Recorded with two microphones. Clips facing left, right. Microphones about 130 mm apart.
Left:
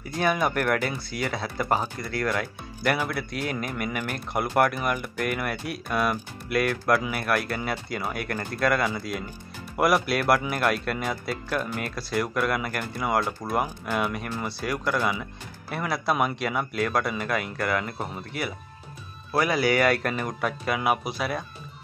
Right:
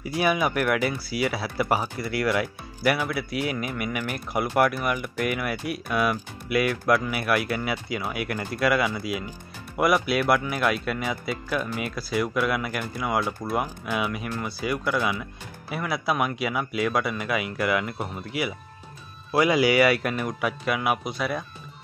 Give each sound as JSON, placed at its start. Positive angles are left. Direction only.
{"t": 0.0, "sound": "speech", "side_deg": -10}
{"t": 19.3, "sound": "speech", "side_deg": -15}